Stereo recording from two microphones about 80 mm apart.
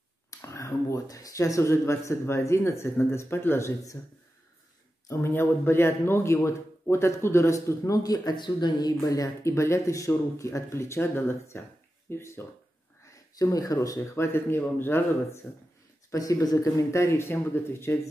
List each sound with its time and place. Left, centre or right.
0.3 s speech: left
5.0 s speech: left
9.0 s speech: left
13.0 s speech: left
14.1 s speech: left
16.1 s speech: left